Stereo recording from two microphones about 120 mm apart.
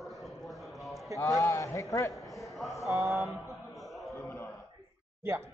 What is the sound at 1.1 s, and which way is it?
A man's voice, 30° left (ahead or behind).